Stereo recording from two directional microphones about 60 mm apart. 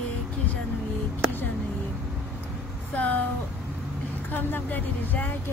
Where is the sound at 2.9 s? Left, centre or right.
Left.